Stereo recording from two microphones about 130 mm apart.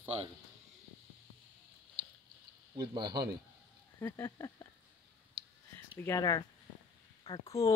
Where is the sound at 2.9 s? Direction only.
35° right (ahead or behind).